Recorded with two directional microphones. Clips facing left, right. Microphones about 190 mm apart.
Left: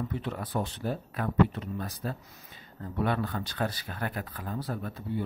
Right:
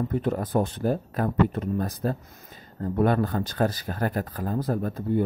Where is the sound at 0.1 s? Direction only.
45° right (ahead or behind).